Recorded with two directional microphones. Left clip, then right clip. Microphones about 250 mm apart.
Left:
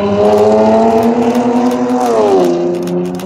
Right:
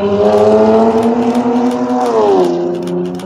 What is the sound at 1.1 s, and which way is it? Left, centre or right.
Vehicle, centre.